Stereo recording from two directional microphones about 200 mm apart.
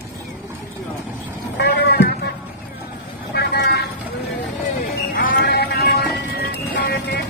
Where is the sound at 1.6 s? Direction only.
55° left (ahead or behind).